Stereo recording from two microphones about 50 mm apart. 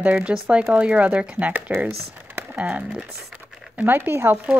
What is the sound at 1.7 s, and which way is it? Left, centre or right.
Crumpling, right.